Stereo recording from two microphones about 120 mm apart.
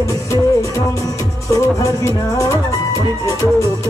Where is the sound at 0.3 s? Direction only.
25° left (ahead or behind).